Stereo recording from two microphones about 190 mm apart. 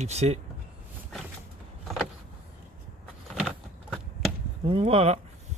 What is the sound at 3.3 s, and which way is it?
Vehicle, centre (ahead or behind).